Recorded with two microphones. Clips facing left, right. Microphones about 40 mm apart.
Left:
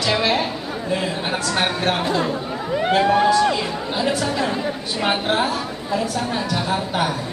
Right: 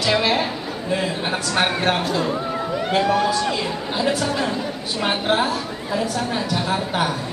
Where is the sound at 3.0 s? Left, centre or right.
Left.